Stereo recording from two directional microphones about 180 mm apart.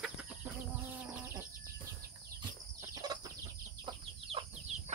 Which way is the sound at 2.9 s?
20° right (ahead or behind).